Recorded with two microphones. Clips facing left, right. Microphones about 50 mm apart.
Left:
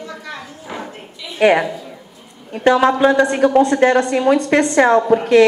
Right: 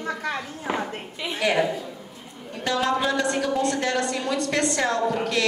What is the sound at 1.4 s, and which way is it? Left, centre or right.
A woman's voice, left.